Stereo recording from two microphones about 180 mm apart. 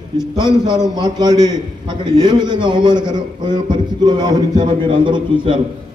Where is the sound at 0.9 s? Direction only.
25° right (ahead or behind).